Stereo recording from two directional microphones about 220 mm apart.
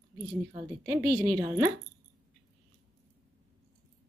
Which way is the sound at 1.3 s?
15° right (ahead or behind).